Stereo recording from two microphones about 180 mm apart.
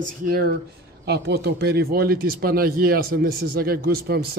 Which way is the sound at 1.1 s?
65° right (ahead or behind).